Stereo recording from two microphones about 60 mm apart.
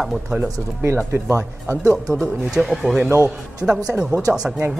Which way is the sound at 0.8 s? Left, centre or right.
Right.